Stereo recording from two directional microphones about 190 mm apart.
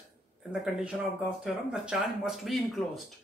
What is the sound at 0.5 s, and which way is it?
Speech, 5° right (ahead or behind).